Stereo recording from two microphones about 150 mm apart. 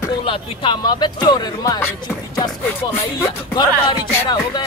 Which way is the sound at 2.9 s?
20° left (ahead or behind).